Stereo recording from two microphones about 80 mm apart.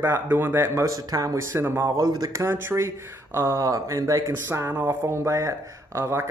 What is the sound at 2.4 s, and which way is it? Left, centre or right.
Speech, right.